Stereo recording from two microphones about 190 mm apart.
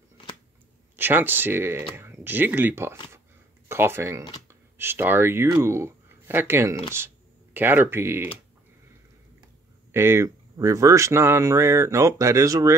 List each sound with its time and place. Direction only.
0.9 s speech: 10° right (ahead or behind)
9.9 s speech: 15° right (ahead or behind)